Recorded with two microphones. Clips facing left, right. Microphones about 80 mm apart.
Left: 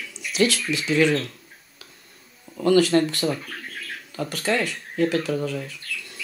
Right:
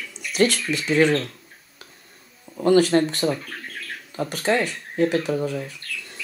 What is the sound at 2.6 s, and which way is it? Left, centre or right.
Speech, right.